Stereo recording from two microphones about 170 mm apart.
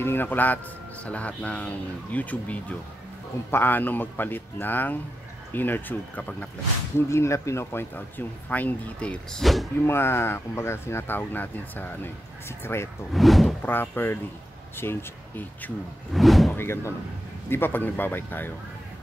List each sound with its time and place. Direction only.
0.0 s speech: 10° left (ahead or behind)
9.8 s speech: 15° left (ahead or behind)
13.1 s speech: centre (ahead or behind)
13.6 s speech: 10° left (ahead or behind)
16.1 s speech: centre (ahead or behind)
16.5 s speech: 15° left (ahead or behind)